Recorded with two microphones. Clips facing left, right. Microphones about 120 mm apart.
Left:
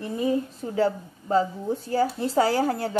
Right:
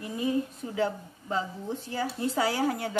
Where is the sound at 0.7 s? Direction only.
40° left (ahead or behind).